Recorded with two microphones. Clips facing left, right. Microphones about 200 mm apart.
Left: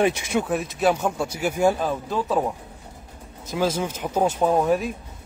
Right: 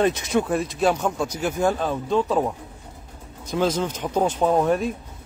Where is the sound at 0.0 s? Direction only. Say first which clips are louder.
Right 1 dB; 10° left (ahead or behind).